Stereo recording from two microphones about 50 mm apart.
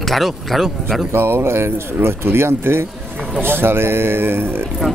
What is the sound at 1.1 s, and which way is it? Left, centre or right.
Speech, right.